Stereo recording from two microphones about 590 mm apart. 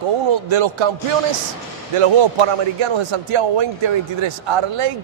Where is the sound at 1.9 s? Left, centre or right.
Right.